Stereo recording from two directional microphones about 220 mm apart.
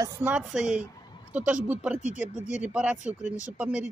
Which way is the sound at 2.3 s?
30° left (ahead or behind).